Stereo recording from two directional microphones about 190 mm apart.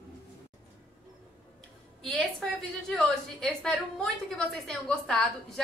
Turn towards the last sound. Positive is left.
turn(degrees=0)  # may be behind; listen again after turning